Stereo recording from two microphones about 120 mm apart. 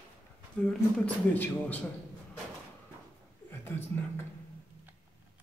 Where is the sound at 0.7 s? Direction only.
10° left (ahead or behind).